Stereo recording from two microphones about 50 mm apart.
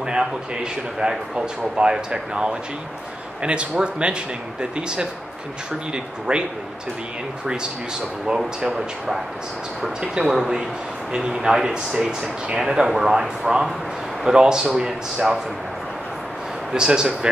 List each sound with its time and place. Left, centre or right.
0.0 s a man's voice: centre
6.3 s speech: centre
8.4 s speech: centre
11.9 s speech: centre
16.7 s speech: centre